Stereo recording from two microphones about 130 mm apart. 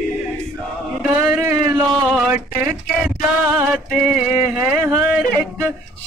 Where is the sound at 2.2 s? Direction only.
10° right (ahead or behind).